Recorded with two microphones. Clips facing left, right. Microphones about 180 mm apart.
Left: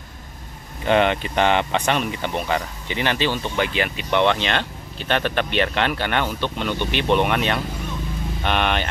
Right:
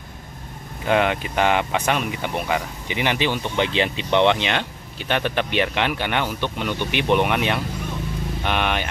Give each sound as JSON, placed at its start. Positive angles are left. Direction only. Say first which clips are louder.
{"t": 0.8, "sound": "speech", "louder": "left 2 dB", "side_deg": -5}